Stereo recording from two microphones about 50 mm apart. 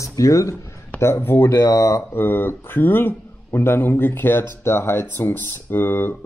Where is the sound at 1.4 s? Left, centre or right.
Left.